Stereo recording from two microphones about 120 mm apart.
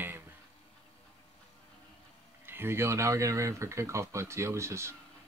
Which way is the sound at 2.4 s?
20° right (ahead or behind).